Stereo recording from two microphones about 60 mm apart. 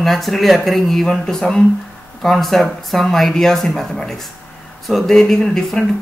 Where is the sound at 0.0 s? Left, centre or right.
Centre.